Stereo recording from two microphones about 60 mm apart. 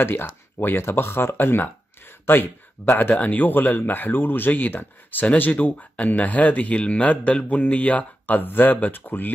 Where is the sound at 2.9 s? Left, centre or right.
Left.